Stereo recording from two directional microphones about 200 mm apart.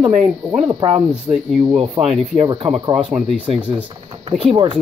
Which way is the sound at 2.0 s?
20° right (ahead or behind).